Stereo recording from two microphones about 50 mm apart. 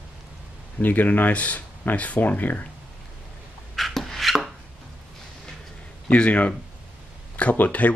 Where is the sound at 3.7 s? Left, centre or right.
Centre.